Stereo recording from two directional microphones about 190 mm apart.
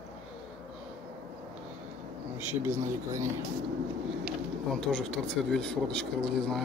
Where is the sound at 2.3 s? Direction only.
15° right (ahead or behind).